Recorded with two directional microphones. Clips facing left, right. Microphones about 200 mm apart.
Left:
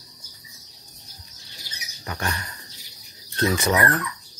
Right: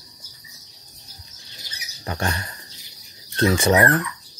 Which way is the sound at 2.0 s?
30° right (ahead or behind).